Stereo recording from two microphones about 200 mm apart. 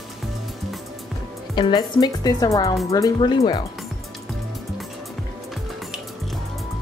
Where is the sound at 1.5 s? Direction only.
20° left (ahead or behind).